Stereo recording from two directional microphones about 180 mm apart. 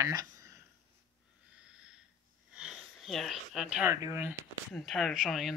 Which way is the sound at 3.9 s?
15° right (ahead or behind).